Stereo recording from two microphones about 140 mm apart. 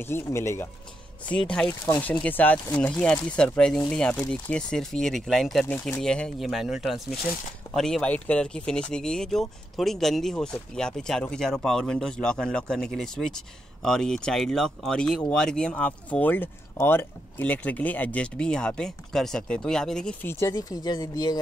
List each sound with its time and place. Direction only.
0.0 s speech: 20° left (ahead or behind)
1.3 s speech: 5° left (ahead or behind)
20.5 s speech: 30° left (ahead or behind)